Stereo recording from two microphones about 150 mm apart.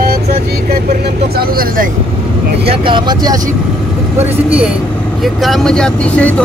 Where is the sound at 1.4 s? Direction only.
75° right (ahead or behind).